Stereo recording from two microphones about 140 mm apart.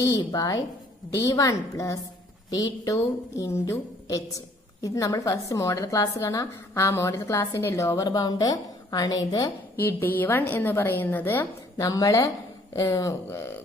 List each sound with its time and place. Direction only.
0.2 s a woman's voice: 25° left (ahead or behind)
9.8 s a woman's voice: 15° left (ahead or behind)